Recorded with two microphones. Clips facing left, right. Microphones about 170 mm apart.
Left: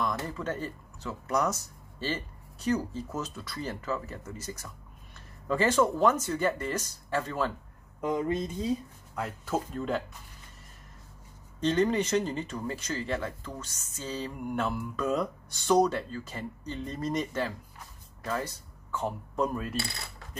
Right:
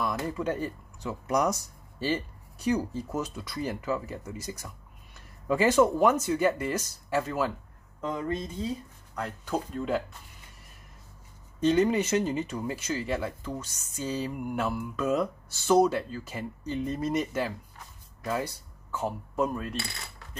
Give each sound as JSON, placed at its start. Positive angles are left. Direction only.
{"t": 0.0, "sound": "speech", "side_deg": -10}
{"t": 8.0, "sound": "speech", "side_deg": 20}
{"t": 9.1, "sound": "speech", "side_deg": 5}
{"t": 11.6, "sound": "speech", "side_deg": -10}
{"t": 18.2, "sound": "coin", "side_deg": -10}